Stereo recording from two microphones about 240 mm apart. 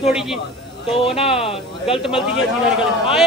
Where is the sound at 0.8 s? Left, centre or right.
Left.